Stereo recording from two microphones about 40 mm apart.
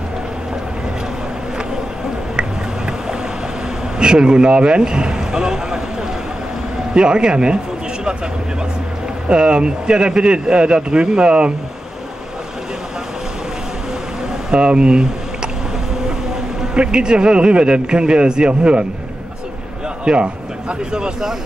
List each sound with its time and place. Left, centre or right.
4.0 s speech: right
6.9 s speech: right
9.3 s speech: right
14.5 s speech: right
16.7 s speech: right
20.1 s speech: centre